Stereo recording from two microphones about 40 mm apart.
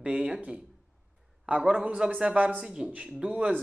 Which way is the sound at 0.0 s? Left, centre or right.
Right.